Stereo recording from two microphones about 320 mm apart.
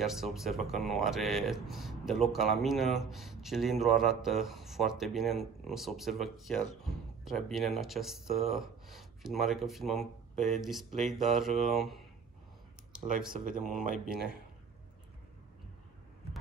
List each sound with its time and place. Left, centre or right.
0.0 s speech: centre
13.5 s speech: right